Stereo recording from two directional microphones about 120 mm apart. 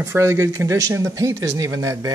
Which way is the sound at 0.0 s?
20° right (ahead or behind).